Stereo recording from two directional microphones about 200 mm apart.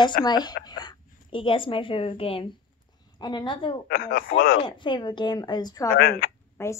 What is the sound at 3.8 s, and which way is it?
Speech, 45° left (ahead or behind).